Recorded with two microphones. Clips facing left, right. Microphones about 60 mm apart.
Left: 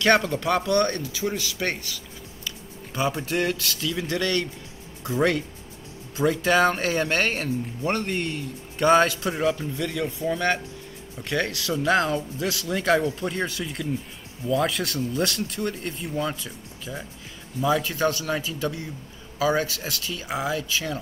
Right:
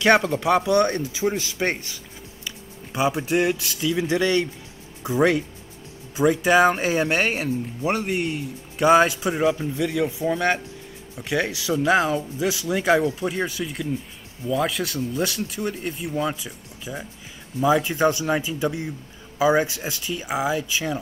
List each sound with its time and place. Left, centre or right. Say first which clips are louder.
0.0 s speech: right 2 dB; centre